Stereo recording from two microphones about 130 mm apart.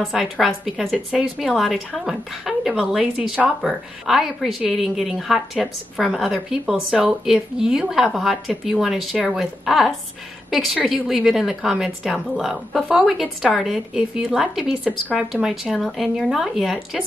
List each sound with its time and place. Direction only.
0.0 s a woman's voice: centre (ahead or behind)